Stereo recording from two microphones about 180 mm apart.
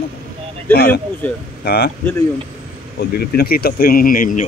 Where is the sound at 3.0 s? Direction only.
60° left (ahead or behind).